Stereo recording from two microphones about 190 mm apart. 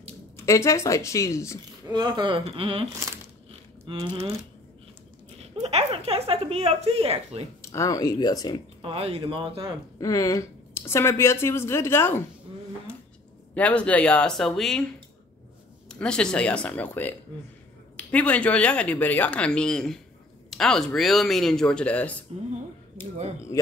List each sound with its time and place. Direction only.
0.4 s a woman's voice: 15° left (ahead or behind)
1.9 s speech: 20° right (ahead or behind)
5.6 s speech: 35° right (ahead or behind)
7.6 s speech: 15° left (ahead or behind)
8.8 s speech: 30° right (ahead or behind)
9.9 s a woman's voice: 20° left (ahead or behind)
13.6 s speech: 5° left (ahead or behind)
15.9 s a woman's voice: 5° left (ahead or behind)
23.5 s a woman's voice: 15° left (ahead or behind)